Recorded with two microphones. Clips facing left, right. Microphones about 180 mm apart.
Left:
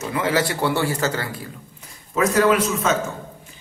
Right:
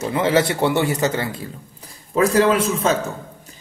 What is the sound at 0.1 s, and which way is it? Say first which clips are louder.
A man's voice: right 3 dB; 25° right (ahead or behind).